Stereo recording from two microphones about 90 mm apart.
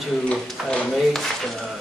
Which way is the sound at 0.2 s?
10° left (ahead or behind).